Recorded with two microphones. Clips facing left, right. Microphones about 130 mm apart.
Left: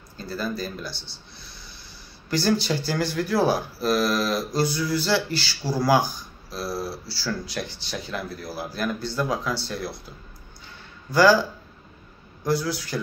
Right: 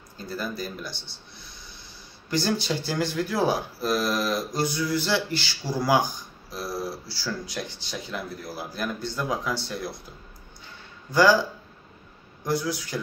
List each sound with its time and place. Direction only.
0.2 s speech: 15° right (ahead or behind)
11.1 s speech: 15° right (ahead or behind)
12.4 s a man's voice: 20° right (ahead or behind)